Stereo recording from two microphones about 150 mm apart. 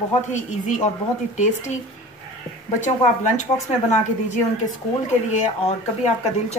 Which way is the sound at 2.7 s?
50° left (ahead or behind).